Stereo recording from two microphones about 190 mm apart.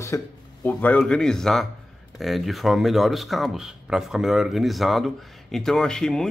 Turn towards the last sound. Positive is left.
turn(degrees=5)  # may be behind; listen again after turning